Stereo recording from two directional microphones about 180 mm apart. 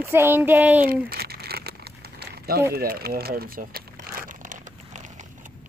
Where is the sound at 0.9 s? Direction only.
60° right (ahead or behind).